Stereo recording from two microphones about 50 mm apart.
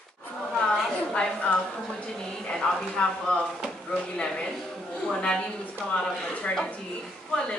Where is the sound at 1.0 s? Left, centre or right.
Left.